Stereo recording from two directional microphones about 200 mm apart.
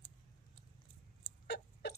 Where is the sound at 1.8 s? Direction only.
60° left (ahead or behind).